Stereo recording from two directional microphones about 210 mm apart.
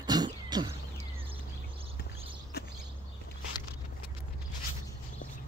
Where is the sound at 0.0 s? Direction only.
20° right (ahead or behind).